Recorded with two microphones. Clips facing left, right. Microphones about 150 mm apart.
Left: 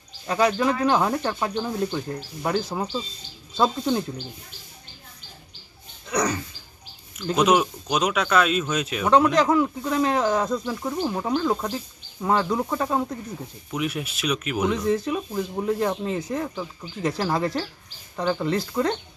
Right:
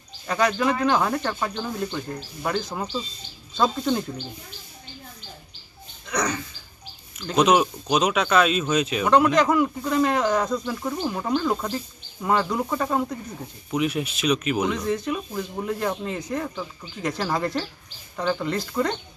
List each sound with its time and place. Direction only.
0.3 s speech: 5° left (ahead or behind)
6.0 s a sound: 10° left (ahead or behind)
7.2 s speech: 5° left (ahead or behind)